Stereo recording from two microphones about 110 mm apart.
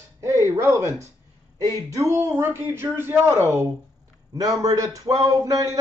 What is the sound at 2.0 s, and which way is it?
A man's voice, 30° right (ahead or behind).